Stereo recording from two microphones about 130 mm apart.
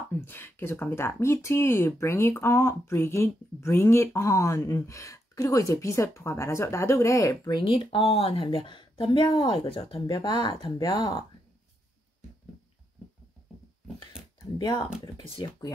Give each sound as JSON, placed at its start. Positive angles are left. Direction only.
{"t": 0.1, "sound": "speech", "side_deg": 15}
{"t": 7.6, "sound": "a woman's voice", "side_deg": 40}
{"t": 14.4, "sound": "speech", "side_deg": 35}